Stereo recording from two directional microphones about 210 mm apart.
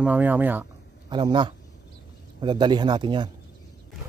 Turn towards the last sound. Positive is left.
turn(degrees=-20)  # may be behind; listen again after turning